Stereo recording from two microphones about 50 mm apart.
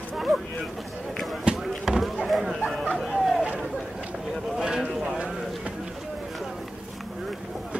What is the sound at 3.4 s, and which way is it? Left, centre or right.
Run, right.